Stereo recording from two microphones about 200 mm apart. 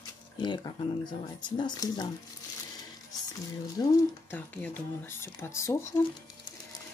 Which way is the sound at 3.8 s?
15° left (ahead or behind).